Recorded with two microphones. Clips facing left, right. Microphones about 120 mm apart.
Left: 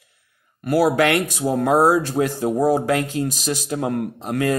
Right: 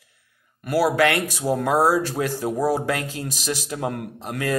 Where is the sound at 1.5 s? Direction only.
45° left (ahead or behind).